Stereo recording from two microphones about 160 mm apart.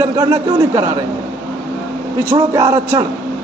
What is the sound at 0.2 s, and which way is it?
Speech, 15° right (ahead or behind).